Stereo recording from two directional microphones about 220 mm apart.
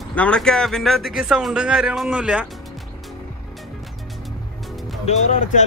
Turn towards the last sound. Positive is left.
turn(degrees=35)  # may be behind; listen again after turning